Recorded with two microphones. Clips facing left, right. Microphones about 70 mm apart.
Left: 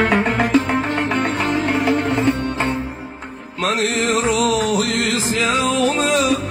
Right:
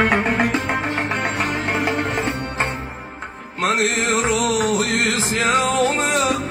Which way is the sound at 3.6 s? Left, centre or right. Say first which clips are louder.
Even; right.